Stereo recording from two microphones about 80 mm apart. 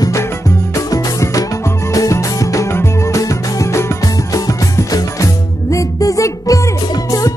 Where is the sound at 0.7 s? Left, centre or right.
Left.